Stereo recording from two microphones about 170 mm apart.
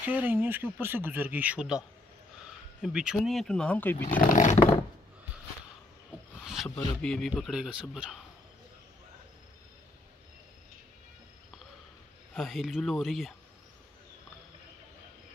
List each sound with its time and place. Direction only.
0.0 s a man's voice: 10° right (ahead or behind); by 4.1 s 10° left (ahead or behind)
4.1 s speech: 50° left (ahead or behind)
6.4 s speech: centre (ahead or behind)
12.4 s speech: centre (ahead or behind)